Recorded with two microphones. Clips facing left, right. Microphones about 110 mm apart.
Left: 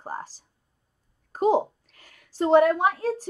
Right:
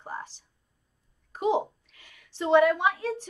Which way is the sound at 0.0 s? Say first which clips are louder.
Left 3 dB; 35° left (ahead or behind).